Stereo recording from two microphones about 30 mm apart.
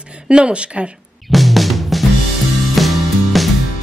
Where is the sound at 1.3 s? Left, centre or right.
Centre.